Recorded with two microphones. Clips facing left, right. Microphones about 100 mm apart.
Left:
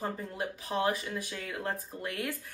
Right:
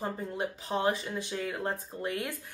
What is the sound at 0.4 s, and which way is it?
Speech, 25° right (ahead or behind).